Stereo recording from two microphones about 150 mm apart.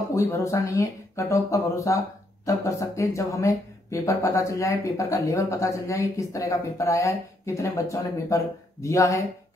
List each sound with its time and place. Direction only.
0.1 s speech: 20° left (ahead or behind)